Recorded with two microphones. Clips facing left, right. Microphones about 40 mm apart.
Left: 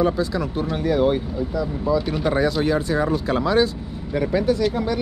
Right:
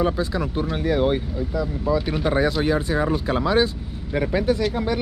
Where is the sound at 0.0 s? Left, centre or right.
Centre.